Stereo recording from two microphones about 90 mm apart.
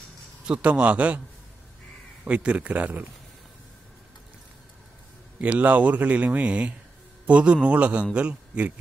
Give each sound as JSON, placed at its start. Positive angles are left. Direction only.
{"t": 0.5, "sound": "a man's voice", "side_deg": -10}
{"t": 2.2, "sound": "a man's voice", "side_deg": -15}
{"t": 5.4, "sound": "a man's voice", "side_deg": -15}